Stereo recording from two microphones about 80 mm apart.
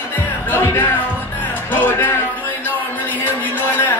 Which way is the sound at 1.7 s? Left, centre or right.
Left.